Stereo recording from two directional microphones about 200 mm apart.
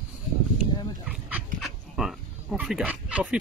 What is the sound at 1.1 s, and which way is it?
Dog, 5° right (ahead or behind).